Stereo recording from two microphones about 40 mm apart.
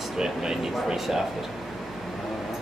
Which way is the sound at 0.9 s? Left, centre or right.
Centre.